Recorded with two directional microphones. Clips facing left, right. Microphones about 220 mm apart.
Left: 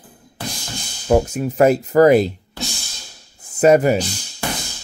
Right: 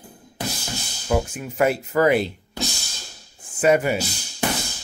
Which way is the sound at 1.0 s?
40° left (ahead or behind).